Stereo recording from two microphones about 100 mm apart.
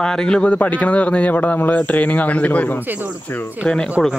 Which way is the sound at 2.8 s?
15° right (ahead or behind).